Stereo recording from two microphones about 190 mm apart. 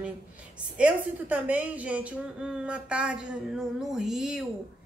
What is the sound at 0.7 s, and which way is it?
Speech, 5° right (ahead or behind).